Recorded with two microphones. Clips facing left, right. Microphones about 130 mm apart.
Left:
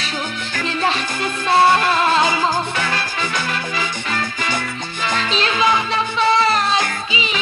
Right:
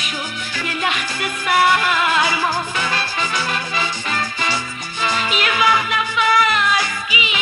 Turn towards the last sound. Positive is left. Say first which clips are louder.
# left 1 dB
turn(degrees=30)  # may be behind; listen again after turning